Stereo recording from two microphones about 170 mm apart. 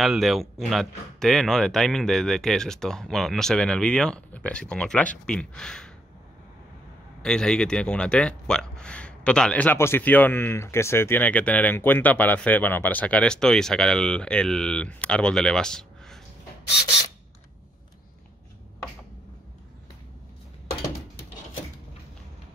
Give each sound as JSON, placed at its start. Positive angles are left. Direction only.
{"t": 0.0, "sound": "speech", "side_deg": 0}
{"t": 7.2, "sound": "speech", "side_deg": 5}